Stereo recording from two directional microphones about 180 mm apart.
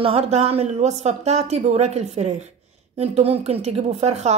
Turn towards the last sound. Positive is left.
turn(degrees=-35)  # may be behind; listen again after turning